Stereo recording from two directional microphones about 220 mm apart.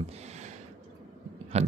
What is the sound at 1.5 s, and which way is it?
Speech, 30° right (ahead or behind).